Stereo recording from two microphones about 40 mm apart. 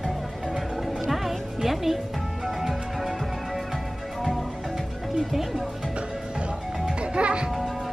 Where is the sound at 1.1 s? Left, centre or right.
Centre.